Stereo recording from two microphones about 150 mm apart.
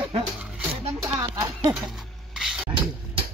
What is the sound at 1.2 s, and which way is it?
Speech, 25° right (ahead or behind).